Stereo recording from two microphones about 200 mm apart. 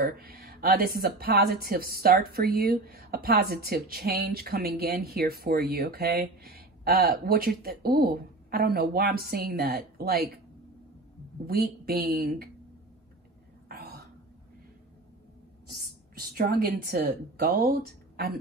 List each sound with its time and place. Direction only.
0.0 s a woman's voice: 50° right (ahead or behind)
11.8 s a woman's voice: 50° right (ahead or behind)
13.7 s whispering: 50° right (ahead or behind)
15.8 s a woman's voice: 50° right (ahead or behind)